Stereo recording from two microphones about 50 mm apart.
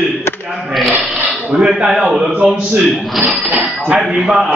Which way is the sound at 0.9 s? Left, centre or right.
Right.